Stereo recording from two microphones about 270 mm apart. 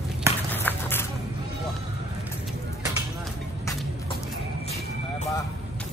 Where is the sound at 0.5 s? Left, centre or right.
Centre.